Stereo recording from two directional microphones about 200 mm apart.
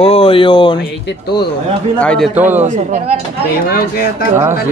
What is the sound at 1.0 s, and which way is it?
Speech, 55° left (ahead or behind).